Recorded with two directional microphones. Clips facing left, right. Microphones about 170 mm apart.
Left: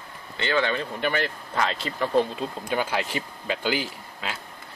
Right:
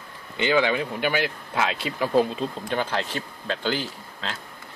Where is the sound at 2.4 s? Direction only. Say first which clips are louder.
Right 1 dB; 10° left (ahead or behind).